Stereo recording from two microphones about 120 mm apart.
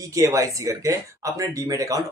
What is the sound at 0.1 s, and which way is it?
Speech, 25° right (ahead or behind).